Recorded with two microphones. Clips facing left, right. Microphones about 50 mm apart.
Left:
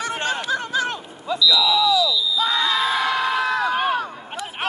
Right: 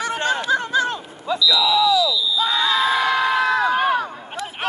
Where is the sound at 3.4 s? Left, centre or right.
Right.